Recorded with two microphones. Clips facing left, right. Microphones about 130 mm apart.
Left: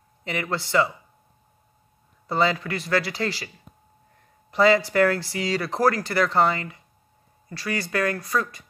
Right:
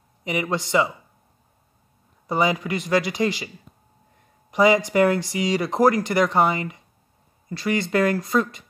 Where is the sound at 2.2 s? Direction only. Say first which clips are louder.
Right 1 dB; 15° right (ahead or behind).